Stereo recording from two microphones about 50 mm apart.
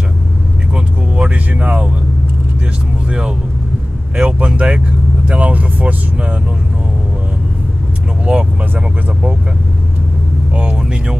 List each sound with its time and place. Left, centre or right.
0.7 s vehicle: right
3.1 s vehicle: centre
4.2 s speech: right
8.3 s speech: right
10.5 s speech: right